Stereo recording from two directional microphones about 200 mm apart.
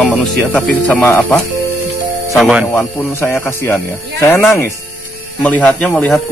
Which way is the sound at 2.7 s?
10° left (ahead or behind).